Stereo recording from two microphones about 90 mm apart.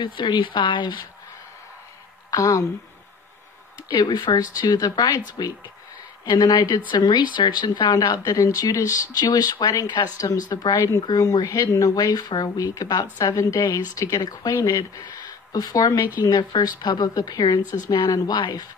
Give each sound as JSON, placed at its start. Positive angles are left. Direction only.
{"t": 0.0, "sound": "speech", "side_deg": 60}
{"t": 2.3, "sound": "speech", "side_deg": 40}
{"t": 3.9, "sound": "speech", "side_deg": 60}